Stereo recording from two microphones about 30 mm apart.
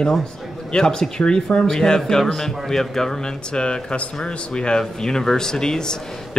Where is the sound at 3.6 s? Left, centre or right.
Left.